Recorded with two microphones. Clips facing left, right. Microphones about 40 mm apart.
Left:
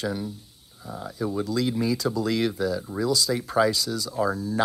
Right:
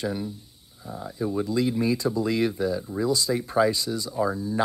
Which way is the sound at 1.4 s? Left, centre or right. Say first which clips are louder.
Right 1 dB; right.